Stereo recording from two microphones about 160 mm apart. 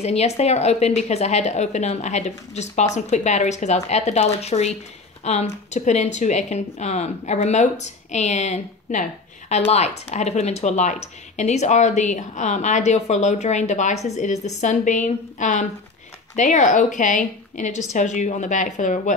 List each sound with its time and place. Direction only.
0.0 s speech: 40° left (ahead or behind)